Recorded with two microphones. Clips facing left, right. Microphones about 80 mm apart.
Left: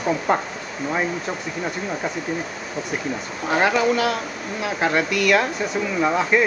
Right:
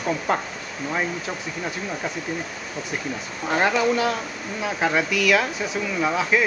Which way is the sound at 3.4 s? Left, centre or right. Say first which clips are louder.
Left 2 dB; centre.